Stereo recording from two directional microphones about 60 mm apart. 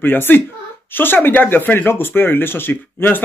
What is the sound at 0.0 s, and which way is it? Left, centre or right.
Speech, left.